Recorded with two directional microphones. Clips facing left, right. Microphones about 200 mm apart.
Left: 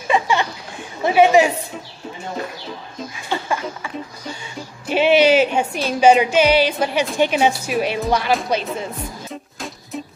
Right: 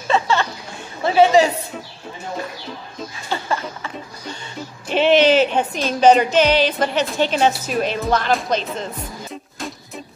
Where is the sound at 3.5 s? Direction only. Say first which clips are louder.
Left 1 dB; 10° left (ahead or behind).